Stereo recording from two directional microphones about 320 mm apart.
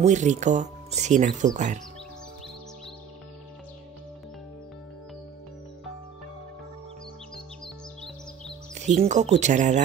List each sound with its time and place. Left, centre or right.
0.0 s speech: right
8.8 s speech: right